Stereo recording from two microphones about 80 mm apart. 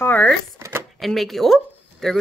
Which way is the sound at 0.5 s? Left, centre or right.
Right.